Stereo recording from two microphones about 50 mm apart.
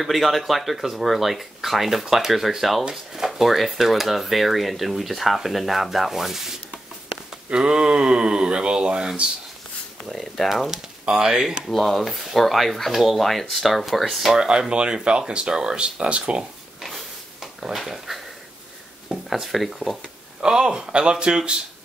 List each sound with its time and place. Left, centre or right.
0.0 s speech: centre
3.3 s speech: centre
7.4 s speech: centre
10.0 s speech: centre
10.7 s speech: centre
16.8 s a sound: centre
19.0 s speech: centre
20.4 s speech: centre